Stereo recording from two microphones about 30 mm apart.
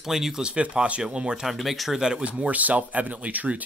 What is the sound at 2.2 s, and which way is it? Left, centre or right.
Speech, right.